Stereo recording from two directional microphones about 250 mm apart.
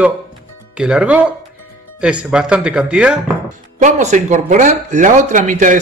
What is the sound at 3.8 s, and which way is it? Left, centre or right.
Speech, right.